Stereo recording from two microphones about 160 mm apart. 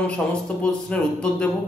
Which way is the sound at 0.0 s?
5° left (ahead or behind).